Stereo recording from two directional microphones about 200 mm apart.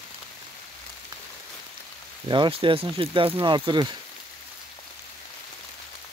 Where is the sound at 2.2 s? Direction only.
25° right (ahead or behind).